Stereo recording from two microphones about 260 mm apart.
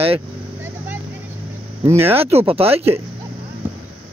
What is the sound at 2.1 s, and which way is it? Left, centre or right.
Speech, right.